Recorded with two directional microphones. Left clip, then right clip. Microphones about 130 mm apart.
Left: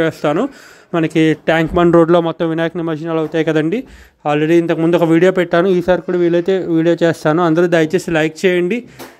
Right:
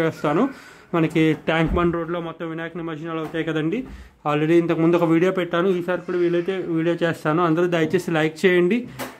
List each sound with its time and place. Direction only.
0.0 s speech: 25° left (ahead or behind)
1.9 s speech: 75° left (ahead or behind); by 3.6 s 45° left (ahead or behind)
4.2 s speech: 25° left (ahead or behind)